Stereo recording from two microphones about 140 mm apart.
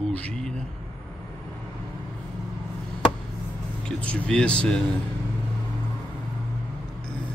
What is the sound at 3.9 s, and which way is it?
Speech, 10° left (ahead or behind).